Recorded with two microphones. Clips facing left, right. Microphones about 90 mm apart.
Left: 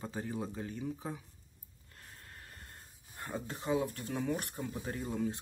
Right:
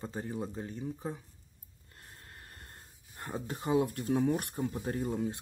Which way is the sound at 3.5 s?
45° right (ahead or behind).